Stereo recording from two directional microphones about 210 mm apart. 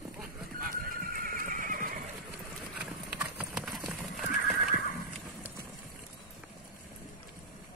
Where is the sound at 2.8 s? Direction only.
5° right (ahead or behind).